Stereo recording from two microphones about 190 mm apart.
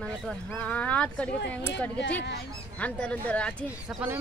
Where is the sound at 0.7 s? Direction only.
5° left (ahead or behind).